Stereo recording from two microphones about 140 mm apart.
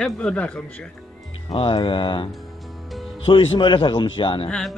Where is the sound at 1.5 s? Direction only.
40° left (ahead or behind).